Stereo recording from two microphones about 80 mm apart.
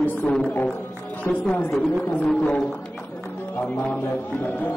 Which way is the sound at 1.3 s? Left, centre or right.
Left.